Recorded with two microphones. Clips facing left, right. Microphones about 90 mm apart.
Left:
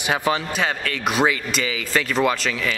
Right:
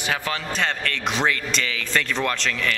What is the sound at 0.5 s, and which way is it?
Speech, 5° left (ahead or behind).